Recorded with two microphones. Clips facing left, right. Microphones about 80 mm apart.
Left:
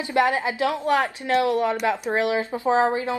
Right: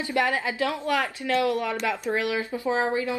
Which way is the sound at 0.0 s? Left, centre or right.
Left.